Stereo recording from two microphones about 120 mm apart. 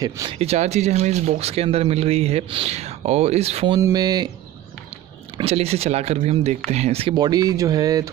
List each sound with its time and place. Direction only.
0.3 s speech: 60° right (ahead or behind)
3.8 s speech: 35° right (ahead or behind)
5.4 s speech: 60° right (ahead or behind)
7.2 s speech: 35° right (ahead or behind)